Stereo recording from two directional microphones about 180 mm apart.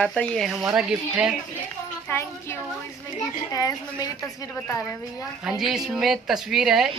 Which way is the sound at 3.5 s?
20° left (ahead or behind).